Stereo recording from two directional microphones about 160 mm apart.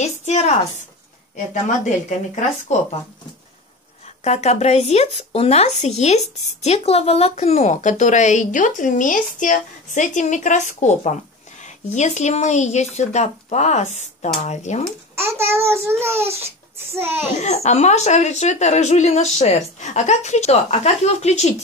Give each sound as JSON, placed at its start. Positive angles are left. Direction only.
{"t": 0.0, "sound": "a sound", "side_deg": 45}
{"t": 1.5, "sound": "speech", "side_deg": 50}
{"t": 4.2, "sound": "speech", "side_deg": 45}
{"t": 15.2, "sound": "a child's voice", "side_deg": -15}
{"t": 17.4, "sound": "speech", "side_deg": 45}